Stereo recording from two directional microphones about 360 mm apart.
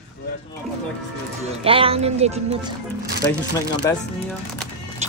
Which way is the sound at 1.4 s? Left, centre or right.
Centre.